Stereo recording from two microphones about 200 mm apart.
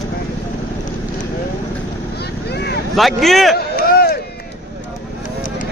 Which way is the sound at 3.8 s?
50° left (ahead or behind).